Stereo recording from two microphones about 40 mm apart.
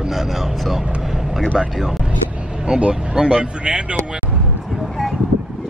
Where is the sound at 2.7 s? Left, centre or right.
Right.